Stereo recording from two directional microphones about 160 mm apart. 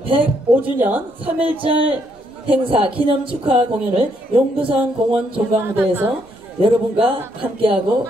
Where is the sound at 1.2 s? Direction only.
35° right (ahead or behind).